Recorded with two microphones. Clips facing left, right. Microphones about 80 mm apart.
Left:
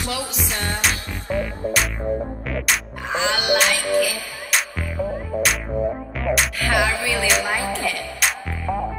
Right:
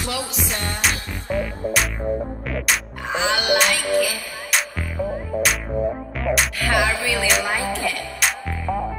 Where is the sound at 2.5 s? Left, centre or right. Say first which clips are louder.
Even; centre.